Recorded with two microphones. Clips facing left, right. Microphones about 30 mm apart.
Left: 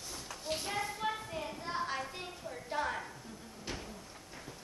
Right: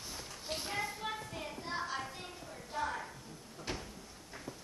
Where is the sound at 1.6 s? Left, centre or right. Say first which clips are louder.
Left 1 dB; left.